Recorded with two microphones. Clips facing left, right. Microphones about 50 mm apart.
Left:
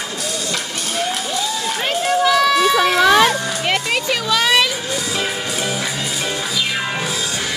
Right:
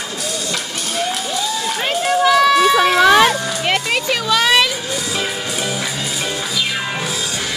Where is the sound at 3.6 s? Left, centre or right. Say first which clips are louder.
Right 2 dB; right.